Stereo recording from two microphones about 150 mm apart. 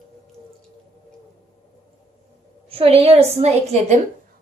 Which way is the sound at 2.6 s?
40° right (ahead or behind).